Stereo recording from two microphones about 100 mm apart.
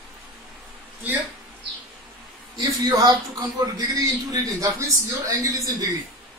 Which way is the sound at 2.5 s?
40° right (ahead or behind).